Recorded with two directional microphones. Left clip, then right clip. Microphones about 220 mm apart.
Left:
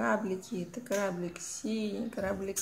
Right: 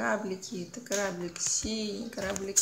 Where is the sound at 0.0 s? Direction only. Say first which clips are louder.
Even; 15° left (ahead or behind).